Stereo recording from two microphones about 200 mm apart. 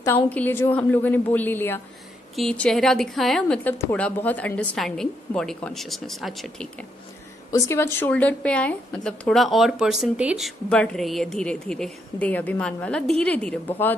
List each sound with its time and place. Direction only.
0.0 s a woman's voice: 10° left (ahead or behind)
7.5 s a woman's voice: 15° left (ahead or behind)